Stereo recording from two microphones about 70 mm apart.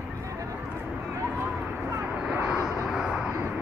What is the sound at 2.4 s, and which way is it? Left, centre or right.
Vehicle, centre.